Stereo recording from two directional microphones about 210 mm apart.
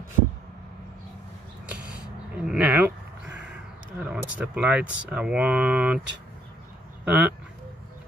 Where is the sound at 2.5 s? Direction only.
5° right (ahead or behind).